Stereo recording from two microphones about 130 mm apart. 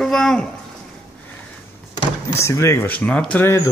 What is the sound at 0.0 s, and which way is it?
Speech, 5° left (ahead or behind).